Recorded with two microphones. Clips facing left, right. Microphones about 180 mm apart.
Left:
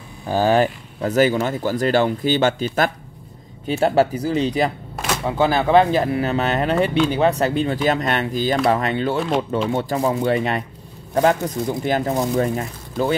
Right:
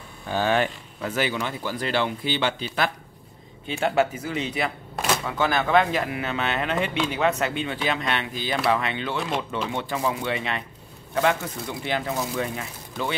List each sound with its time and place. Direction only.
0.3 s speech: 35° left (ahead or behind)
4.9 s a sound: centre (ahead or behind)
5.2 s speech: 30° left (ahead or behind)